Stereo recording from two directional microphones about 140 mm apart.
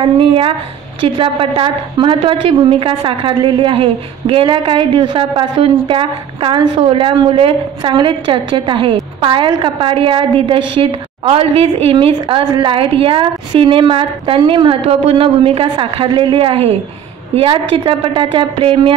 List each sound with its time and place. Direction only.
1.0 s a woman's voice: 40° right (ahead or behind)